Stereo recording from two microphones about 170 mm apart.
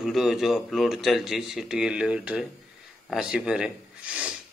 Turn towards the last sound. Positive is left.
turn(degrees=-5)  # may be behind; listen again after turning